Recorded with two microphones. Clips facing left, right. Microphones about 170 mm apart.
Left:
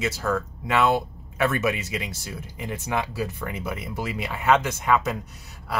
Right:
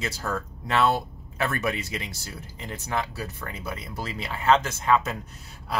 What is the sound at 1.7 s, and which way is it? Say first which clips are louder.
Speech: left 2 dB; 15° left (ahead or behind).